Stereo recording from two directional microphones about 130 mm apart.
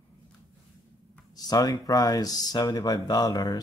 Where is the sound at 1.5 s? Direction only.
30° left (ahead or behind).